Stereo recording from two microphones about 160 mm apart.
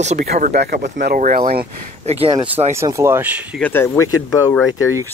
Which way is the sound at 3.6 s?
10° left (ahead or behind).